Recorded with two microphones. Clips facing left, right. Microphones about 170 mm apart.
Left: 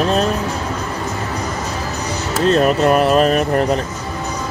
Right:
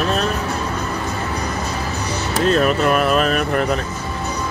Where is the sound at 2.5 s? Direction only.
35° left (ahead or behind).